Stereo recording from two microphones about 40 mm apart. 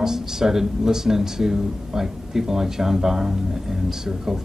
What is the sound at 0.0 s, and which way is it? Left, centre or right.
Speech, centre.